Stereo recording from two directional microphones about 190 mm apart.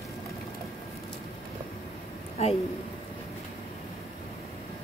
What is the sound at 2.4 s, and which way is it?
Speech, 35° left (ahead or behind).